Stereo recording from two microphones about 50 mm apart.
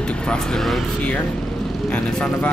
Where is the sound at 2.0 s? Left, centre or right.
Left.